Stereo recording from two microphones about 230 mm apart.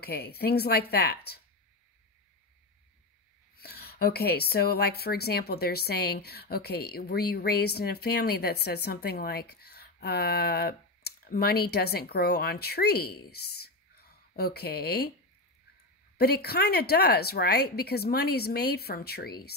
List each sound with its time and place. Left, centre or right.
0.0 s speech: left
3.5 s speech: left
16.2 s speech: left